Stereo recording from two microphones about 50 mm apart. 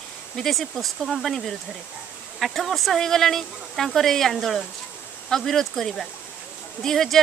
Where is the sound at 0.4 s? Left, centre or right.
Centre.